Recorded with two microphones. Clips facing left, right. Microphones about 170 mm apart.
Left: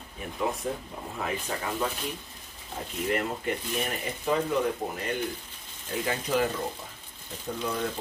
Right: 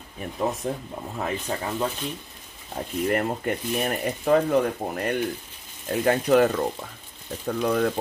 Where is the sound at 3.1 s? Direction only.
50° right (ahead or behind).